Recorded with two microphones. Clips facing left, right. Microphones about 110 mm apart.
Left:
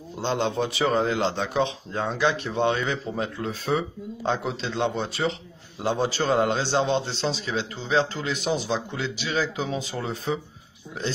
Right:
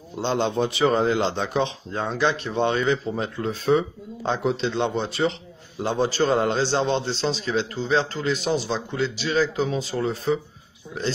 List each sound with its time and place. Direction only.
0.2 s a man's voice: centre (ahead or behind)